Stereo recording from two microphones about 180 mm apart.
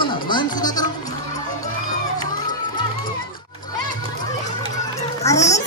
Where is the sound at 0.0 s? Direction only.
25° left (ahead or behind).